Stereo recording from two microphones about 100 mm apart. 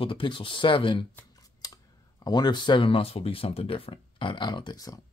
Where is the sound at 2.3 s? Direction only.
45° left (ahead or behind).